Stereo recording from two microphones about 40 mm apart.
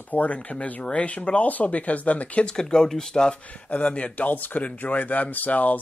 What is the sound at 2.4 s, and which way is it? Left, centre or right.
Speech, centre.